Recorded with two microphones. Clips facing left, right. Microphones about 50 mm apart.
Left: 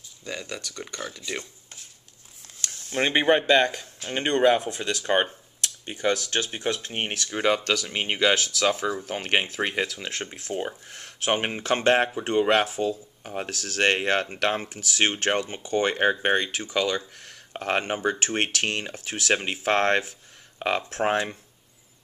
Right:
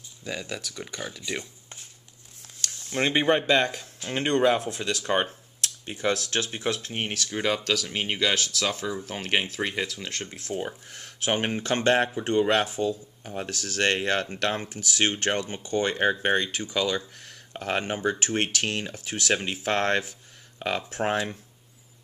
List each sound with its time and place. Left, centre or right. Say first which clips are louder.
0.2 s speech: right 1 dB; centre
2.6 s speech: left 1 dB; centre
3.4 s speech: left 3 dB; centre; by 10.7 s left
10.7 s speech: left 1 dB; centre
13.3 s speech: left 1 dB; centre
19.0 s speech: left 2 dB; centre
19.3 s speech: left 3 dB; centre